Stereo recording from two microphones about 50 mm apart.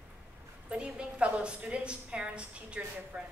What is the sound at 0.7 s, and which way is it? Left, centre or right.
A woman's voice, right.